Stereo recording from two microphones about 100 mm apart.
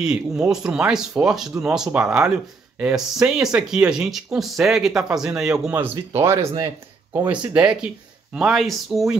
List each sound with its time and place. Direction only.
0.0 s speech: 5° right (ahead or behind)
5.7 s speech: 20° right (ahead or behind)
7.2 s speech: 15° right (ahead or behind)